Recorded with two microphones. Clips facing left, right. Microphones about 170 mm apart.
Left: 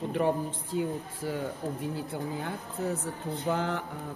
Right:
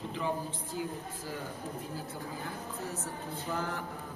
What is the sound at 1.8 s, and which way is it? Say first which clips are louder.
A woman's voice: left 6 dB; 65° left (ahead or behind).